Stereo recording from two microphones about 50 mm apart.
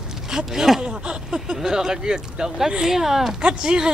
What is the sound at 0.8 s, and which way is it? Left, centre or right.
Speech, centre.